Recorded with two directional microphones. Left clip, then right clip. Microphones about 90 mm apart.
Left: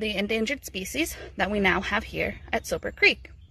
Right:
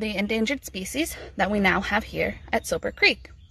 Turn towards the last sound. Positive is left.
turn(degrees=-40)  # may be behind; listen again after turning